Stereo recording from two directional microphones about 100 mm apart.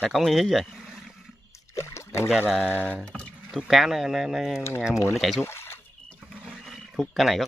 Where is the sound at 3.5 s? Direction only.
Centre (ahead or behind).